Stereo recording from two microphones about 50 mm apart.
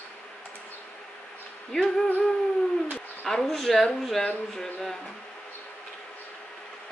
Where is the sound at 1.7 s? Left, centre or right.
Centre.